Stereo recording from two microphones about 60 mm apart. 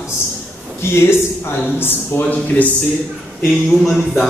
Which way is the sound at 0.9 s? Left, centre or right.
Left.